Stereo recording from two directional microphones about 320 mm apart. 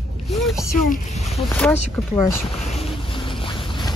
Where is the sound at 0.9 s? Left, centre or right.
Left.